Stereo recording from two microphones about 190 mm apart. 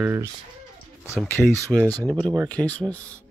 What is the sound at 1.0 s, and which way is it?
Speech, 15° left (ahead or behind).